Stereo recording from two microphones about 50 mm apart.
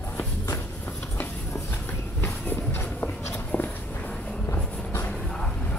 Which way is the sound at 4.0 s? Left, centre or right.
Left.